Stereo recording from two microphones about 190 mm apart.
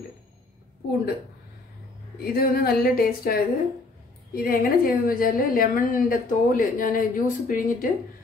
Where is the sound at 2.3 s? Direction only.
50° left (ahead or behind).